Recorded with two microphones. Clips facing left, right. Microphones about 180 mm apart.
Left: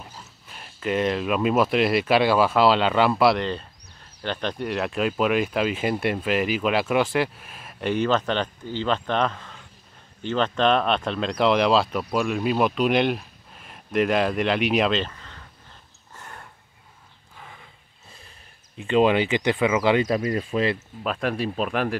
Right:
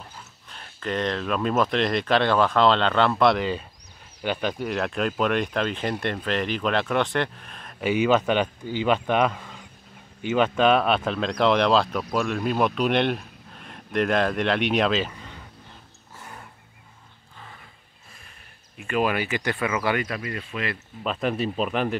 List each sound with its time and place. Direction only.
0.0 s speech: 5° left (ahead or behind)
7.8 s a man's voice: 10° right (ahead or behind)
16.2 s a sound: 10° right (ahead or behind)
18.8 s speech: 25° left (ahead or behind)
20.2 s speech: 30° left (ahead or behind)
21.0 s speech: centre (ahead or behind)